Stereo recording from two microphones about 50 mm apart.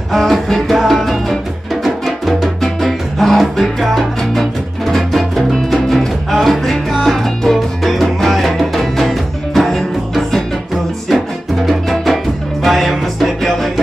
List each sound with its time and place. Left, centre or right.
0.1 s music: centre